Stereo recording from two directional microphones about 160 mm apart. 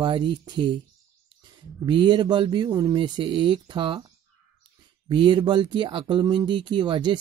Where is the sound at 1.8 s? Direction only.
30° right (ahead or behind).